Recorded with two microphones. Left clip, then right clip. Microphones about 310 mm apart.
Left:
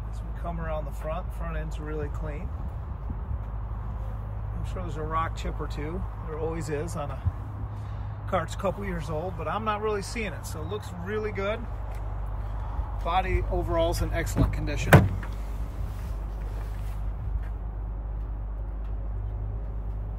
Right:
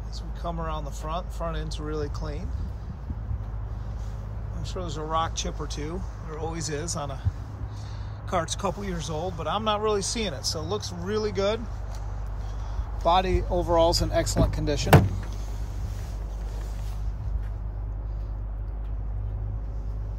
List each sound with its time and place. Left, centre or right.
0.4 s speech: centre
4.7 s speech: centre
8.5 s speech: centre
13.0 s speech: centre